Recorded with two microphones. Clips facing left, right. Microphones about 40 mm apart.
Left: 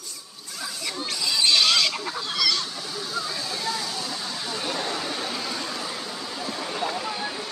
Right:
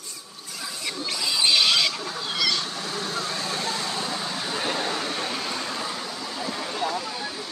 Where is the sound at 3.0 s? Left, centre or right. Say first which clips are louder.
Even; right.